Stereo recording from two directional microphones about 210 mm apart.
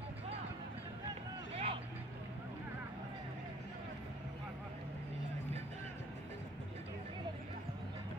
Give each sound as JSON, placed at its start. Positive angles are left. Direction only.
{"t": 1.5, "sound": "vehicle", "side_deg": -30}